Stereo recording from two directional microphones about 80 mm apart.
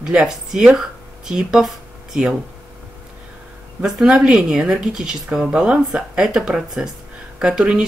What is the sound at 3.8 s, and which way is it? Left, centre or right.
Speech, centre.